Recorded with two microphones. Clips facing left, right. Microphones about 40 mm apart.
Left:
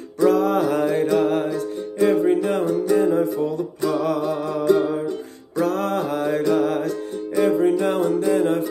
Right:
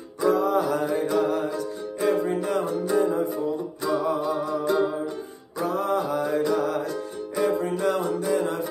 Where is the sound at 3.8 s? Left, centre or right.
Left.